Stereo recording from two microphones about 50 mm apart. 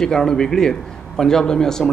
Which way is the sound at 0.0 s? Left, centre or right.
Centre.